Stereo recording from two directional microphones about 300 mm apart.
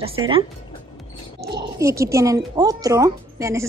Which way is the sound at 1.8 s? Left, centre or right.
Centre.